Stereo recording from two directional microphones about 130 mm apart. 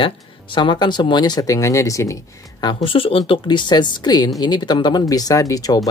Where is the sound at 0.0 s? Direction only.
40° left (ahead or behind).